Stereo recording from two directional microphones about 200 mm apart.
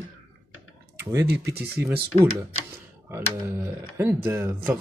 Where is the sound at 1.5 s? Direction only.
50° right (ahead or behind).